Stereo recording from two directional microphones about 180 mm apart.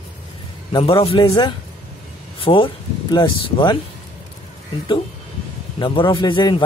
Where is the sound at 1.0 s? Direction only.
30° left (ahead or behind).